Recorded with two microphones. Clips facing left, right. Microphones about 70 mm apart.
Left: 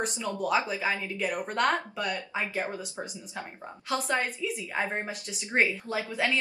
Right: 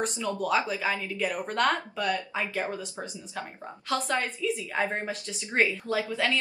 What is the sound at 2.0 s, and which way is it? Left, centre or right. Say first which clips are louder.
Speech: right 3 dB; left.